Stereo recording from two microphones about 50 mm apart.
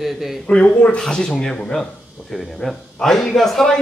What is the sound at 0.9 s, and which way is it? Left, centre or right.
Speech, centre.